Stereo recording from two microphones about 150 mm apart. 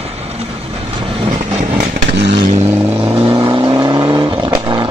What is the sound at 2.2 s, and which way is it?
Vehicle, 40° right (ahead or behind).